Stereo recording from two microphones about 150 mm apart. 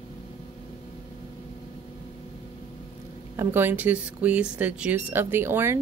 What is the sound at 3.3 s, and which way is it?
Speech, 15° right (ahead or behind).